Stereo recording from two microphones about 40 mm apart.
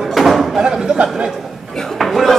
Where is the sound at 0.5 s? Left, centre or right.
Centre.